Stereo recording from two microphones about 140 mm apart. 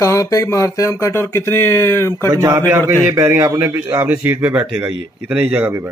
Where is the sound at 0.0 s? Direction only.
20° left (ahead or behind).